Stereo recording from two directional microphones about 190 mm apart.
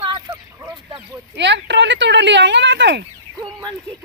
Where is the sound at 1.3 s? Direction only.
65° right (ahead or behind).